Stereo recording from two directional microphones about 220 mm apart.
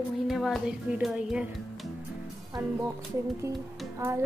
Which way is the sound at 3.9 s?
10° right (ahead or behind).